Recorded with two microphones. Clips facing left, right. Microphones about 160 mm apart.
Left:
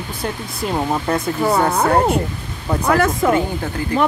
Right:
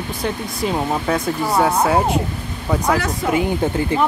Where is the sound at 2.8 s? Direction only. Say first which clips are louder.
Left 6 dB; 50° left (ahead or behind).